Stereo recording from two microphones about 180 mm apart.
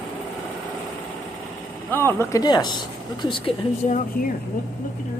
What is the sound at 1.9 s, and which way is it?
Speech, 10° left (ahead or behind).